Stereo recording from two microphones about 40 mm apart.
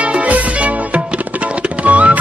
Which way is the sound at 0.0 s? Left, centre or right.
Right.